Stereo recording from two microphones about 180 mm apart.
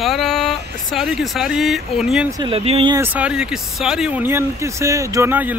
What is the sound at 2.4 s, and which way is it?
Speech, 30° right (ahead or behind).